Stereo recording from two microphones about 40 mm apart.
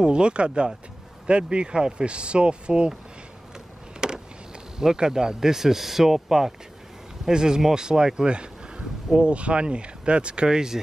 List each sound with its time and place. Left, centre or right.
0.0 s speech: right
4.0 s vehicle: centre
4.7 s speech: centre